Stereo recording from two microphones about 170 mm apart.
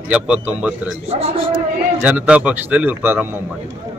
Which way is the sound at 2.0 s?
10° right (ahead or behind).